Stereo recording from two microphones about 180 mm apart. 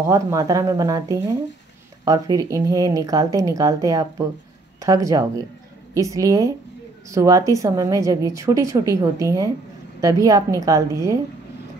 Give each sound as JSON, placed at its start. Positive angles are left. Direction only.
{"t": 0.0, "sound": "speech", "side_deg": -15}